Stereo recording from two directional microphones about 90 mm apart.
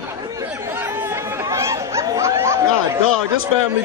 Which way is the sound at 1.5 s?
30° right (ahead or behind).